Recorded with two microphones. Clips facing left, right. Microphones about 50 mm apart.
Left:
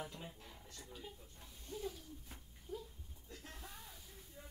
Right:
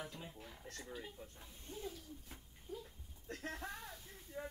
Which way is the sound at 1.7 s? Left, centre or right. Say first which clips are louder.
Left 2 dB; right.